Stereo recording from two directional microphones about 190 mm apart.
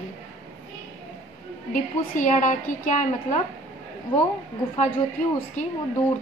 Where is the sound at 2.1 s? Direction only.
40° left (ahead or behind).